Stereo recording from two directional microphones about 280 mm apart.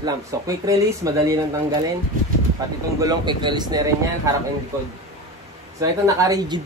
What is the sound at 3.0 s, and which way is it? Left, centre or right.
A man's voice, centre.